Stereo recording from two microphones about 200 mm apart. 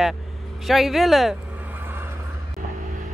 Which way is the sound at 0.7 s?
Centre (ahead or behind).